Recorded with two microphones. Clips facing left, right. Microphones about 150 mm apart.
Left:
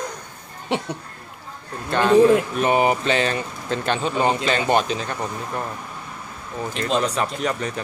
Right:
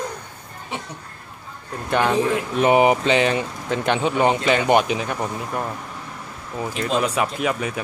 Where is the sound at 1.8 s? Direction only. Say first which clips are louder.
Left 5 dB; 15° right (ahead or behind).